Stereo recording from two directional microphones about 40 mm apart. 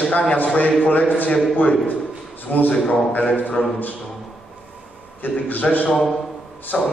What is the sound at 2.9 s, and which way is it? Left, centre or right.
Speech, left.